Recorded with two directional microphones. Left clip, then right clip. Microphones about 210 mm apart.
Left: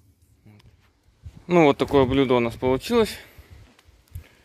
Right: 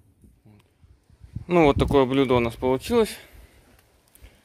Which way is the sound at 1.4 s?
Centre (ahead or behind).